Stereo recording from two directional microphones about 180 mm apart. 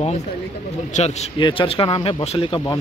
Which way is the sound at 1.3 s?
30° left (ahead or behind).